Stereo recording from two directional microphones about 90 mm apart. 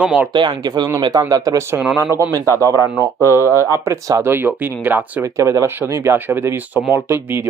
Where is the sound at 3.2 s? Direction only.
35° right (ahead or behind).